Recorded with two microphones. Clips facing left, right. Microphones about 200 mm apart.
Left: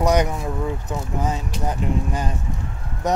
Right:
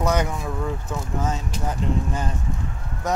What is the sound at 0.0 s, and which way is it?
Speech, 15° left (ahead or behind).